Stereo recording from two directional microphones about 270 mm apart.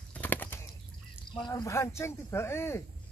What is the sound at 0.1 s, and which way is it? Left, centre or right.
Bird flight, centre.